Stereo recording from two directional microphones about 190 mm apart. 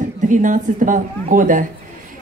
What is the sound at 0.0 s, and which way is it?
Speech, 40° right (ahead or behind).